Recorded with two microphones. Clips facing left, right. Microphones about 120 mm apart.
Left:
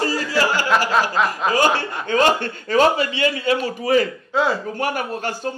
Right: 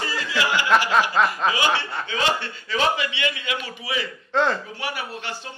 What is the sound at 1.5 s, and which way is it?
Speech, 45° left (ahead or behind).